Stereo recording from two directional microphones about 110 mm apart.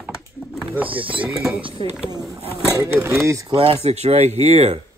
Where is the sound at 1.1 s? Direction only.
10° right (ahead or behind).